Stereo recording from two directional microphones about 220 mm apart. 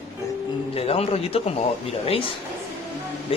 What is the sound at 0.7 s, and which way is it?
A man's voice, 25° left (ahead or behind).